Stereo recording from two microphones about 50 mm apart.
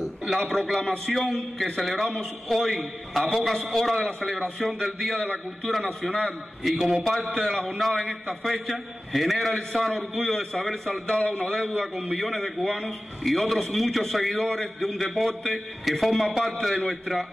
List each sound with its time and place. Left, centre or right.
0.4 s a man's voice: centre
6.6 s a man's voice: centre
8.5 s a man's voice: centre
10.9 s a man's voice: left
12.1 s a man's voice: centre
13.2 s a man's voice: centre